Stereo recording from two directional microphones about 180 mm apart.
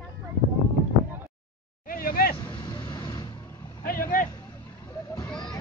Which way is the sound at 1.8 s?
50° left (ahead or behind).